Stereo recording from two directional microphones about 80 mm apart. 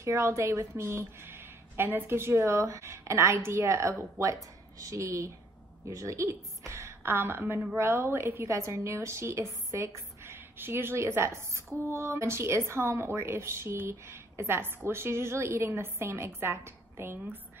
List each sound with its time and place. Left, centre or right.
0.0 s a woman's voice: right